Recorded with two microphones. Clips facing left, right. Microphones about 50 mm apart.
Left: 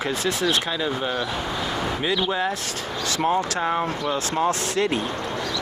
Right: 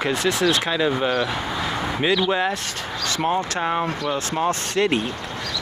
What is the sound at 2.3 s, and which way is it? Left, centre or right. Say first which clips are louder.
Speech: right 3 dB; right.